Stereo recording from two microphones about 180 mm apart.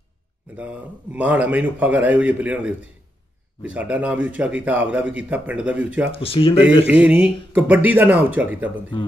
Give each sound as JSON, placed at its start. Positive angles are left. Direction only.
{"t": 0.6, "sound": "a man's voice", "side_deg": -5}
{"t": 6.1, "sound": "speech", "side_deg": 30}
{"t": 6.9, "sound": "a man's voice", "side_deg": -5}